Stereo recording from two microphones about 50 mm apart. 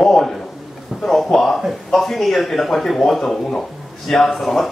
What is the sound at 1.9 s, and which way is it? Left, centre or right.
A man's voice, centre.